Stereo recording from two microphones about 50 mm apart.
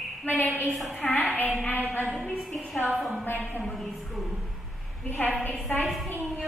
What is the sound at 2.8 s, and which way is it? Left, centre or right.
A woman's voice, centre.